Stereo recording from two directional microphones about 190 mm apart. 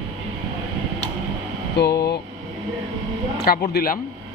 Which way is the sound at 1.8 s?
60° left (ahead or behind).